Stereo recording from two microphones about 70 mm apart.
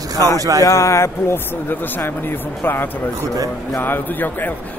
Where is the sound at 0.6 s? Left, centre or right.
Left.